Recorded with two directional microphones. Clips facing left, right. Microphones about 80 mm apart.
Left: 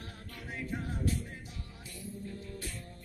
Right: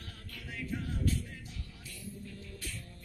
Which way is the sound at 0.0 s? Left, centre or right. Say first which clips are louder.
Left 2 dB; left.